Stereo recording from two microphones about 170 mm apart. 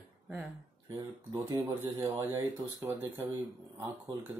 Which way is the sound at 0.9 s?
25° right (ahead or behind).